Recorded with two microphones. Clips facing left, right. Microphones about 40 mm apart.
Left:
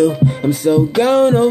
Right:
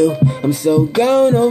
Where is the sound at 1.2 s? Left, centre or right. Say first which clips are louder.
Left 1 dB; left.